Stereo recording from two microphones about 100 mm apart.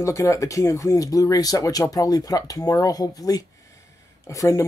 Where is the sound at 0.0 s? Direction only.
30° left (ahead or behind).